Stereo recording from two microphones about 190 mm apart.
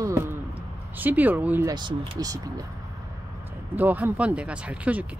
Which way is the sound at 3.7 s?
10° right (ahead or behind).